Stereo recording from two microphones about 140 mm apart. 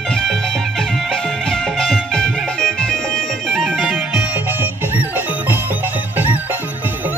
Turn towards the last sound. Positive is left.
turn(degrees=-15)  # may be behind; listen again after turning